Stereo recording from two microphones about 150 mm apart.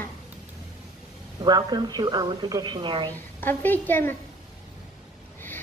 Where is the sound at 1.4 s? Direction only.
25° right (ahead or behind).